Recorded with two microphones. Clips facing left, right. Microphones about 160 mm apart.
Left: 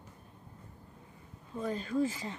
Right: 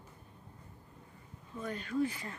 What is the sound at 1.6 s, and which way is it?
Speech, 30° left (ahead or behind).